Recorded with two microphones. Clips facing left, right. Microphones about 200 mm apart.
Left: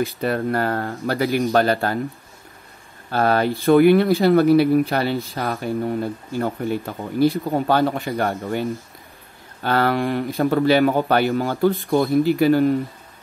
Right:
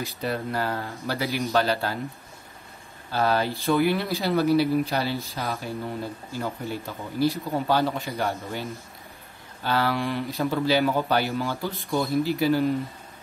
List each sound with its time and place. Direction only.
0.0 s a man's voice: 55° left (ahead or behind)
3.1 s speech: 55° left (ahead or behind)